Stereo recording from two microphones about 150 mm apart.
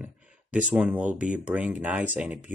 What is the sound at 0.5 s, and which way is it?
Speech, 10° right (ahead or behind).